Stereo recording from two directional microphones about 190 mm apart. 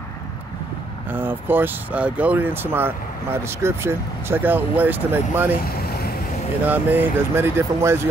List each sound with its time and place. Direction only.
1.1 s speech: 10° right (ahead or behind)
5.8 s vehicle: 55° left (ahead or behind)
6.6 s speech: 10° right (ahead or behind)